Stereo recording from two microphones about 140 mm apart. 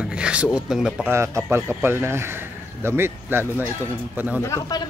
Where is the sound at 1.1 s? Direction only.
20° right (ahead or behind).